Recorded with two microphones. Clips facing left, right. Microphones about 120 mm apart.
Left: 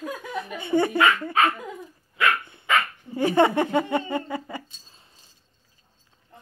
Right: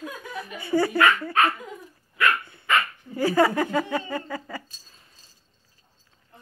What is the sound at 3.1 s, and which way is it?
Speech, 25° left (ahead or behind).